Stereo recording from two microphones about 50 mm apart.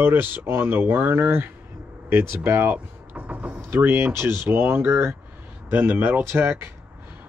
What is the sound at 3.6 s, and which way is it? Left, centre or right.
Speech, right.